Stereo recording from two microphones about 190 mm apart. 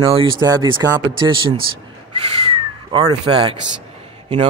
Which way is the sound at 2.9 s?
30° right (ahead or behind).